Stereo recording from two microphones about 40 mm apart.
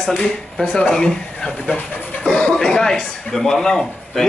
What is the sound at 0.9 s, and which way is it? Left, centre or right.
A man's voice, centre.